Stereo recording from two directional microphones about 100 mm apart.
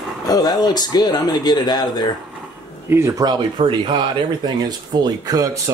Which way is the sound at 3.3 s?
55° right (ahead or behind).